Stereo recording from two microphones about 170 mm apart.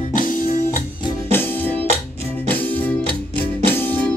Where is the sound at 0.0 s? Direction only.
50° left (ahead or behind).